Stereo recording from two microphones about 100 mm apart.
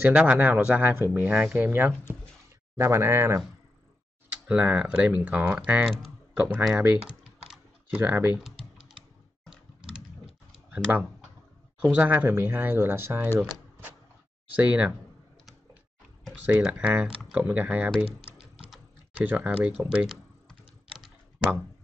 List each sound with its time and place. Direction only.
0.0 s speech: 15° right (ahead or behind)
4.5 s speech: 15° right (ahead or behind)
10.7 s speech: 15° right (ahead or behind)
13.4 s a sound: 20° right (ahead or behind)
14.5 s speech: 15° right (ahead or behind)
16.4 s speech: 10° right (ahead or behind)
19.1 s speech: 15° right (ahead or behind)
20.1 s typing: centre (ahead or behind)